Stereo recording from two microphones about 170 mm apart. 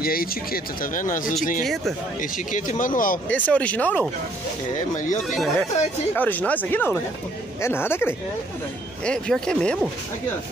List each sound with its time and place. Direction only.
0.0 s speech: 60° left (ahead or behind)
3.3 s speech: 10° left (ahead or behind)
4.9 s speech: 45° left (ahead or behind)
5.3 s speech: centre (ahead or behind)